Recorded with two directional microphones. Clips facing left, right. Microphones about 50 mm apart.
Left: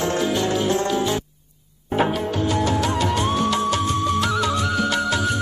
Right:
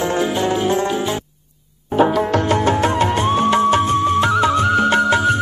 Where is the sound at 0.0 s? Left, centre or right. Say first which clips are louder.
Right 3 dB; right.